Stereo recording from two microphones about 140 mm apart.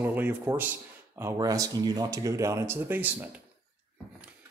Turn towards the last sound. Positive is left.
turn(degrees=-15)  # may be behind; listen again after turning